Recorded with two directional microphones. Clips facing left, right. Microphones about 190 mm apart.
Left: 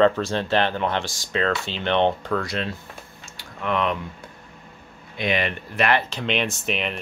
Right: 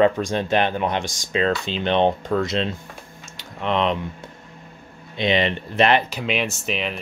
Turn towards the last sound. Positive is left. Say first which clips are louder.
# even
turn(degrees=0)  # may be behind; listen again after turning